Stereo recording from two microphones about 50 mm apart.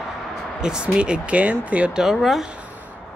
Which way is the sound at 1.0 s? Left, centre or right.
Right.